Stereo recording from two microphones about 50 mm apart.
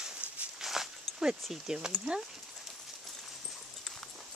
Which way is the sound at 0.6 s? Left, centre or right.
Centre.